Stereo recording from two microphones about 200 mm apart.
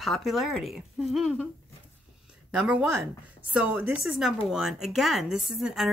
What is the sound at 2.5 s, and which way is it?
Speech, 5° right (ahead or behind).